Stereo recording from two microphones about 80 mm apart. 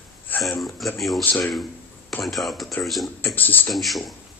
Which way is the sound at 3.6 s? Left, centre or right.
Centre.